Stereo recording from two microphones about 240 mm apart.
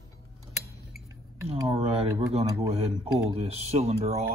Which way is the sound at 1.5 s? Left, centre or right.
Right.